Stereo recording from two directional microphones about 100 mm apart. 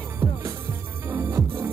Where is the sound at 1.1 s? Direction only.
35° right (ahead or behind).